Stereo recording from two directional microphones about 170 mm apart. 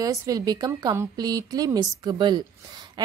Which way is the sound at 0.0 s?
20° right (ahead or behind).